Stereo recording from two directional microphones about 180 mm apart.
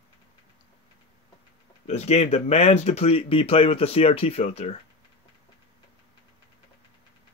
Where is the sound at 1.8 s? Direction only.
35° left (ahead or behind).